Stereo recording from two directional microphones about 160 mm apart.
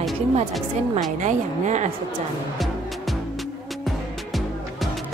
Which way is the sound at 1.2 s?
50° right (ahead or behind).